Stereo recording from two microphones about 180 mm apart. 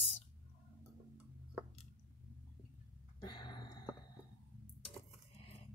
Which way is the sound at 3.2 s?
25° left (ahead or behind).